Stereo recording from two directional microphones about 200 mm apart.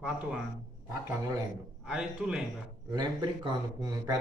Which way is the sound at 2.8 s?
20° right (ahead or behind).